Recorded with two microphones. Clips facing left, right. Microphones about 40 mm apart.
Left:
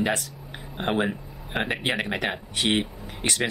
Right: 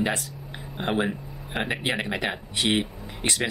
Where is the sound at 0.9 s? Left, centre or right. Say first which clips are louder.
Even; centre.